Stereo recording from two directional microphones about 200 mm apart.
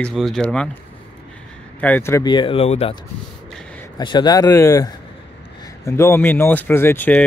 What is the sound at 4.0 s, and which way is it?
Speech, 20° left (ahead or behind).